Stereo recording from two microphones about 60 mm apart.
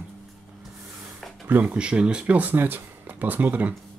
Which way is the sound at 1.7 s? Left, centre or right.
Centre.